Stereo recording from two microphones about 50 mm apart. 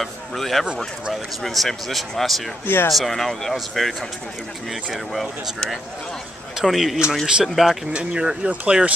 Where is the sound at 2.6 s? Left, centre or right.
Left.